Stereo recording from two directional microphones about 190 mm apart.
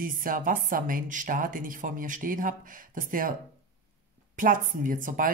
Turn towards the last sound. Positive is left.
turn(degrees=-45)  # may be behind; listen again after turning